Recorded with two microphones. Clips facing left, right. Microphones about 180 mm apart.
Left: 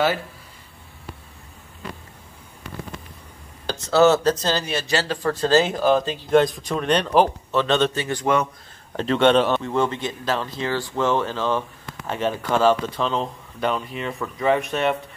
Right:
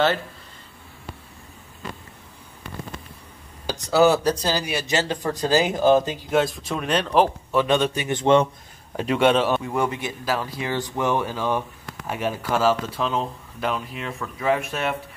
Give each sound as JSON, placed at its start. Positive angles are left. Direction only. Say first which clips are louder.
{"t": 3.6, "sound": "speech", "louder": "left 1 dB", "side_deg": -10}
{"t": 6.3, "sound": "speech", "louder": "left 4 dB", "side_deg": -5}
{"t": 8.9, "sound": "speech", "louder": "left 2 dB", "side_deg": -10}